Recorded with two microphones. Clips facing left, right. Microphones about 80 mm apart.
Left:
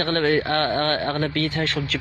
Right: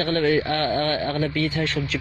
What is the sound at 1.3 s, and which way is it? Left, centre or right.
Speech, left.